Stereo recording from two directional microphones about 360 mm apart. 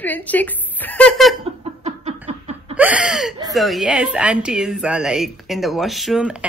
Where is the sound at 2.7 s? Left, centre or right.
Centre.